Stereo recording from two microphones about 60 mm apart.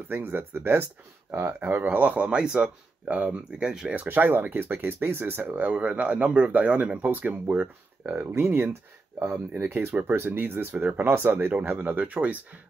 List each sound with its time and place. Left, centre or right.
0.1 s speech: right; by 3.9 s centre
3.9 s speech: right
8.2 s speech: right
10.2 s speech: right